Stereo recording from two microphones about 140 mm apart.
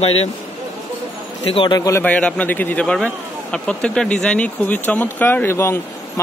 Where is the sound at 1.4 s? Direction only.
40° left (ahead or behind); by 2.0 s 25° left (ahead or behind).